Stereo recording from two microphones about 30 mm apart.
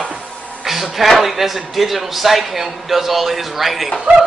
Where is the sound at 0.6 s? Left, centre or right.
Centre.